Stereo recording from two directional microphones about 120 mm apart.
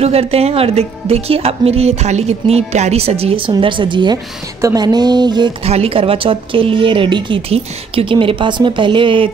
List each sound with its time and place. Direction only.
0.0 s speech: 60° right (ahead or behind); by 4.2 s 40° right (ahead or behind)
4.6 s a sound: 30° right (ahead or behind)
5.6 s speech: 55° right (ahead or behind)